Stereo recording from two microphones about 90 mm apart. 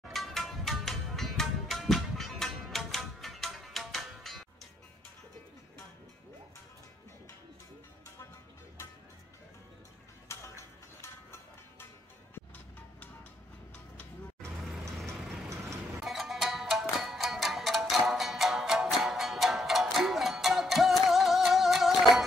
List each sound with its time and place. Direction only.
0.1 s music: centre (ahead or behind)
10.2 s music: 30° left (ahead or behind)
14.6 s vehicle: centre (ahead or behind)
16.0 s music: centre (ahead or behind)